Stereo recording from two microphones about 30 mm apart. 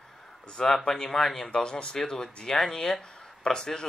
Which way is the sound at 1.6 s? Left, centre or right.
Left.